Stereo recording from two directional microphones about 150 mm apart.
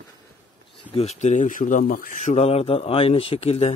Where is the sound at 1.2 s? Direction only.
55° left (ahead or behind).